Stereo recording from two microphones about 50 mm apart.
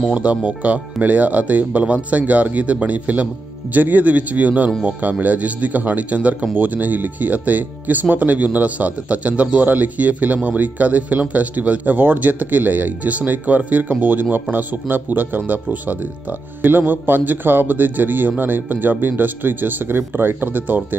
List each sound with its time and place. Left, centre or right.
0.5 s speech: right